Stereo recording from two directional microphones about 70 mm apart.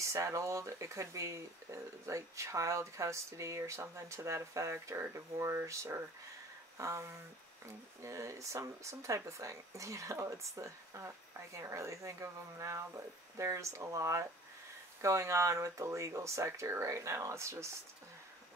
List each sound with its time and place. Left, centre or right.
0.0 s speech: right